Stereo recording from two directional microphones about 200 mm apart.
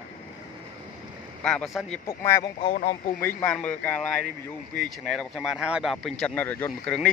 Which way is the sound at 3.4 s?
5° left (ahead or behind).